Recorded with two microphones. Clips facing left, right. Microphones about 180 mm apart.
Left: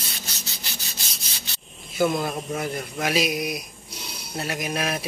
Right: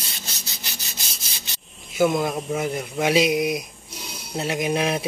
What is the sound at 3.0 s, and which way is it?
Speech, 25° right (ahead or behind).